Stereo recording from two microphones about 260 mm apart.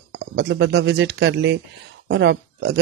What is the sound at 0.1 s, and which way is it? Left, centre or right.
A man's voice, right.